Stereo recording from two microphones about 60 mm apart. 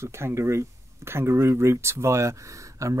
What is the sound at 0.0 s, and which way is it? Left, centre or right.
Speech, right.